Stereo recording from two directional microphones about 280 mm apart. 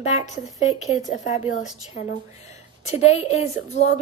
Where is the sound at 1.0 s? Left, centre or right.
Left.